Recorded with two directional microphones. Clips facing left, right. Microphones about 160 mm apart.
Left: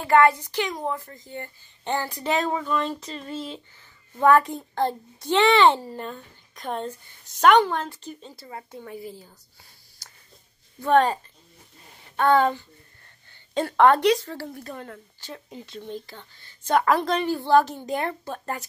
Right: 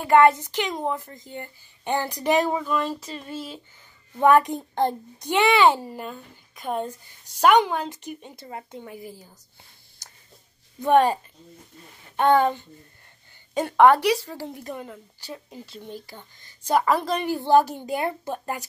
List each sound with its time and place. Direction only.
0.0 s a woman's voice: 20° right (ahead or behind)
4.2 s a woman's voice: 15° right (ahead or behind)
10.8 s a woman's voice: 10° right (ahead or behind)
12.2 s a woman's voice: 20° right (ahead or behind)